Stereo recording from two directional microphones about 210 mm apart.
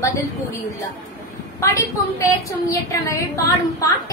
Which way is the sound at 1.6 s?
15° left (ahead or behind).